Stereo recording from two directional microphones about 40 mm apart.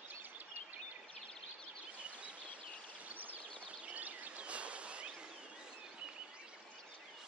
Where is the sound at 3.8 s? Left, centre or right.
Right.